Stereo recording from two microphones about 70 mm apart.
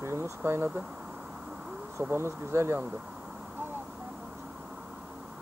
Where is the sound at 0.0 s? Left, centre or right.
Right.